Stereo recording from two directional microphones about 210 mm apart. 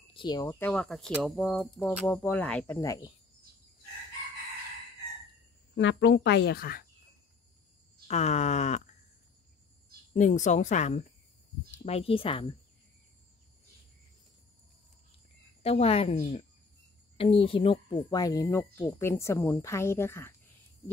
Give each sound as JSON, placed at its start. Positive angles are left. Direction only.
{"t": 0.1, "sound": "speech", "side_deg": 20}
{"t": 5.8, "sound": "a woman's voice", "side_deg": 60}
{"t": 8.1, "sound": "speech", "side_deg": 30}
{"t": 10.1, "sound": "speech", "side_deg": 35}
{"t": 15.6, "sound": "speech", "side_deg": 30}